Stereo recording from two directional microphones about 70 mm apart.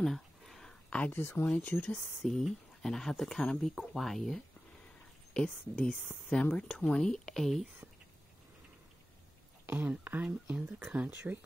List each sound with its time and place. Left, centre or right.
0.0 s a sound: centre
0.8 s speech: centre
1.2 s speech: left
1.5 s speech: left
2.2 s speech: centre
9.7 s speech: right